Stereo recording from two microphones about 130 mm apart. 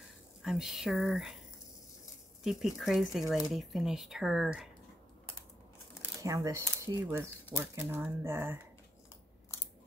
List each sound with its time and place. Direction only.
0.4 s speech: 5° right (ahead or behind)
2.4 s speech: centre (ahead or behind)
6.2 s speech: 25° right (ahead or behind)